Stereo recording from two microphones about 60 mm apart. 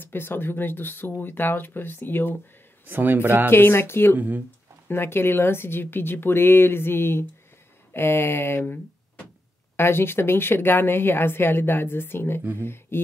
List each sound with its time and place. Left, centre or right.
0.0 s a woman's voice: left
2.9 s speech: right
3.4 s a woman's voice: left
9.8 s a woman's voice: left